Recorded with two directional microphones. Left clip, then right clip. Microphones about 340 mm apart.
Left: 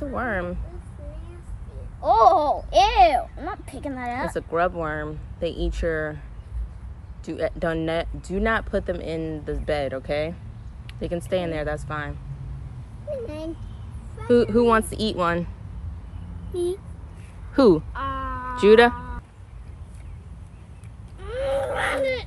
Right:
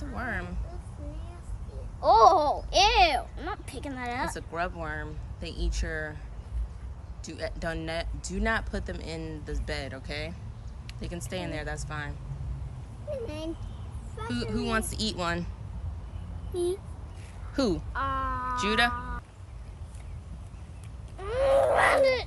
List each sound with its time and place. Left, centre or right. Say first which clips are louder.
0.1 s speech: left 6 dB; centre
2.0 s speech: left 3 dB; centre
3.1 s speech: left 7 dB; centre
3.6 s speech: left 5 dB; centre
7.2 s speech: left 9 dB; centre
13.1 s speech: left 4 dB; centre
14.6 s speech: left 11 dB; centre
16.5 s speech: left 4 dB; centre
17.9 s cat: left 1 dB; centre
21.2 s a sound: right 2 dB; centre